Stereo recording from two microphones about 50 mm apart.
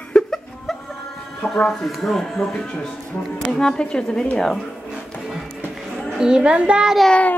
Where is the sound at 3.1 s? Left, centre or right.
Left.